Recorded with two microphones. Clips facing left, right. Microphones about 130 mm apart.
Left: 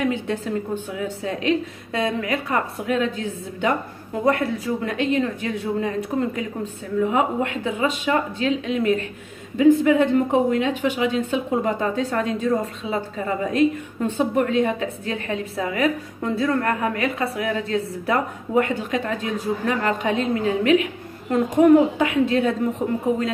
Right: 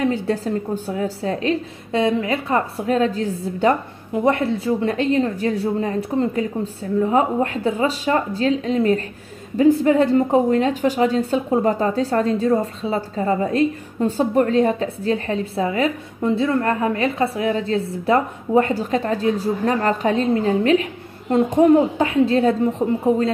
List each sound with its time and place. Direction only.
0.0 s a woman's voice: 35° right (ahead or behind)